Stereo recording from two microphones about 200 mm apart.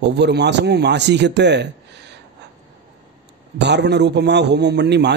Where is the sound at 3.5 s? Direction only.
60° right (ahead or behind).